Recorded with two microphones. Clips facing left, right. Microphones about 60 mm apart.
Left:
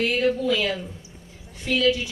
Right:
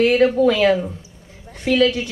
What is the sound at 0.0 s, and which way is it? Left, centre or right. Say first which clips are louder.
Speech: right 8 dB; right.